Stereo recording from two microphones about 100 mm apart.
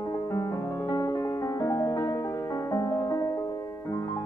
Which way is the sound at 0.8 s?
40° left (ahead or behind).